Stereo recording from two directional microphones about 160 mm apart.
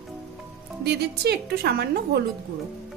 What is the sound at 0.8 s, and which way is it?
A woman's voice, 90° right.